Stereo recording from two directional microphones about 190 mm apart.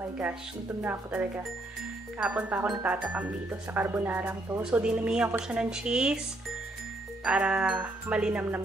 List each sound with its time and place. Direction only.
0.8 s music: 10° right (ahead or behind)
3.7 s a woman's voice: 10° right (ahead or behind)
7.2 s music: 5° right (ahead or behind)